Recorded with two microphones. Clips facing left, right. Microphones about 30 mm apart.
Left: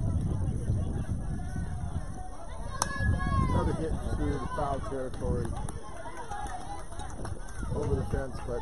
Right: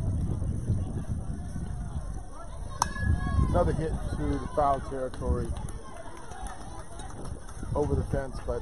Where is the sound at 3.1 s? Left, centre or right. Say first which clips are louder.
Left 1 dB; left.